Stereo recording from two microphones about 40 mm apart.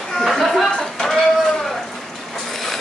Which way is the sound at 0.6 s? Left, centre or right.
Centre.